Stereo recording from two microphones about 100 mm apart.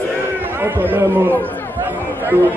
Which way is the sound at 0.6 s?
20° right (ahead or behind).